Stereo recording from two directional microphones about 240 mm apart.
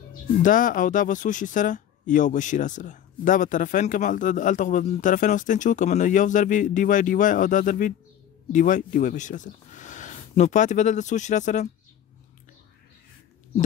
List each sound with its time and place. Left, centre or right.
0.4 s speech: left